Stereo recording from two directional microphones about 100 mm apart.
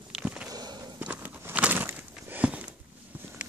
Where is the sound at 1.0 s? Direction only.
15° right (ahead or behind).